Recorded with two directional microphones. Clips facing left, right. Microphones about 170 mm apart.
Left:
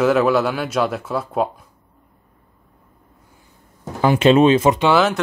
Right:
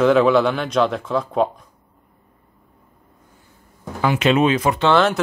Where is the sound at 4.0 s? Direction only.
30° left (ahead or behind).